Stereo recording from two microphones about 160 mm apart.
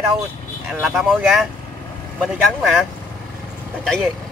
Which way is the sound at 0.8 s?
Centre (ahead or behind).